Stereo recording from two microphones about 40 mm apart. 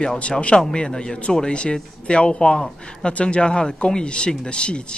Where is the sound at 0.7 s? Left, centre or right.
Centre.